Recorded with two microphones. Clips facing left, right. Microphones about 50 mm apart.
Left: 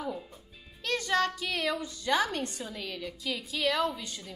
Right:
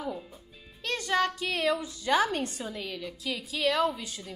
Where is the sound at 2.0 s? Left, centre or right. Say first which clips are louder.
Right 3 dB; right.